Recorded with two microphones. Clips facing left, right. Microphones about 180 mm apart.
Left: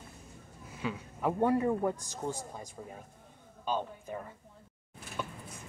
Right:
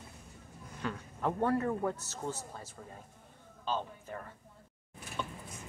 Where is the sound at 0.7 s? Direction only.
10° left (ahead or behind).